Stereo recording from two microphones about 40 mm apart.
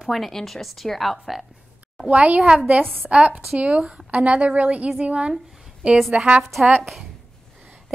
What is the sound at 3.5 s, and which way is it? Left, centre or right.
Speech, right.